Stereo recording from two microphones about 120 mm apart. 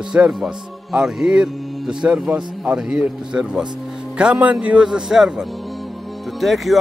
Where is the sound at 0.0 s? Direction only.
5° right (ahead or behind).